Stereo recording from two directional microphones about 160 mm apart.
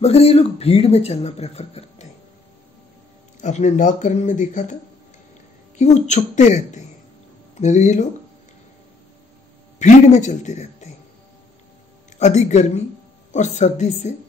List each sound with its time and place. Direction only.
0.0 s speech: 40° left (ahead or behind)
3.3 s speech: 50° left (ahead or behind)
5.8 s speech: 45° left (ahead or behind)
9.8 s speech: 50° left (ahead or behind)
12.2 s speech: 45° left (ahead or behind)